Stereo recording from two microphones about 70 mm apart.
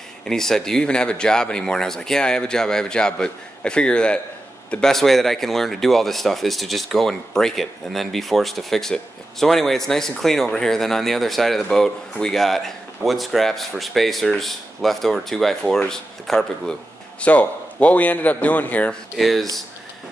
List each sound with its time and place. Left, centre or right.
0.3 s speech: centre
17.2 s a man's voice: left
19.1 s speech: centre